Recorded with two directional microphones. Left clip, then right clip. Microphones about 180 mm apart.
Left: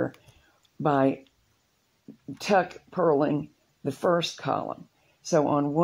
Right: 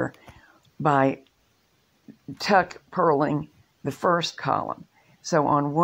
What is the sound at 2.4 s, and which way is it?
Speech, 15° right (ahead or behind).